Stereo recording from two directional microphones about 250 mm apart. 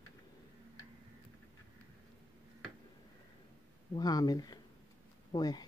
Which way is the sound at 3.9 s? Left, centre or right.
Centre.